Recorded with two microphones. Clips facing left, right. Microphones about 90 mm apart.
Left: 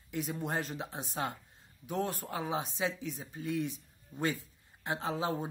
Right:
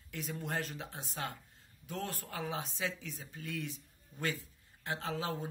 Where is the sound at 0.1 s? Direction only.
20° left (ahead or behind).